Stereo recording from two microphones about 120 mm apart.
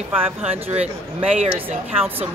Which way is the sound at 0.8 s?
60° right (ahead or behind).